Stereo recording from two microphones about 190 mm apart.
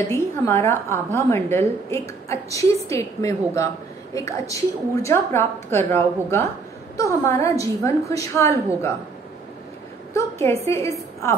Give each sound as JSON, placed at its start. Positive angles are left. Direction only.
{"t": 0.1, "sound": "a woman's voice", "side_deg": 15}
{"t": 10.1, "sound": "a woman's voice", "side_deg": 15}